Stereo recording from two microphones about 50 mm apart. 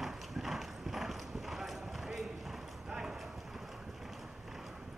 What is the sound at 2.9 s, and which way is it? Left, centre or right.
Clip-clop, centre.